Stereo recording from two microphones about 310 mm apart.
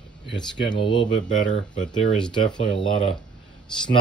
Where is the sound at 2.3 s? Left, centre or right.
Centre.